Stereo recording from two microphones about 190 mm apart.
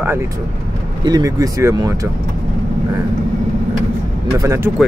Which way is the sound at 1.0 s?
20° right (ahead or behind).